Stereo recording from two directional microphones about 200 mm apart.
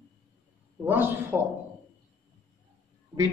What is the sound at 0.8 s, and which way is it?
Speech, 10° right (ahead or behind).